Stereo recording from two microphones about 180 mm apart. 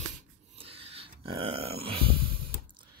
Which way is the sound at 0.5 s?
30° right (ahead or behind).